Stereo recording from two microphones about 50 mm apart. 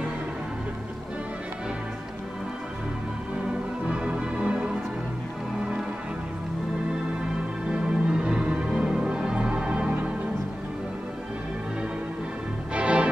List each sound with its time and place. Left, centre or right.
3.9 s music: centre
7.7 s music: right
12.7 s music: right